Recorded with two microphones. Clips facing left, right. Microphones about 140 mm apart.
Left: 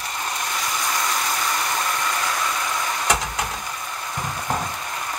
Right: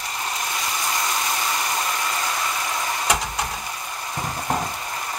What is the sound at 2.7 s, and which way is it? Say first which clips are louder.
Vehicle: even; 25° right (ahead or behind).